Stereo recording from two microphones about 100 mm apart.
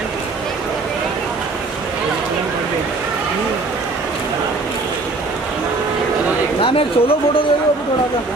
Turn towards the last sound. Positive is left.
turn(degrees=65)  # may be behind; listen again after turning